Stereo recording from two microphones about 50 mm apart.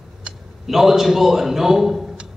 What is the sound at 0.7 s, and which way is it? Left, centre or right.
A man's voice, centre.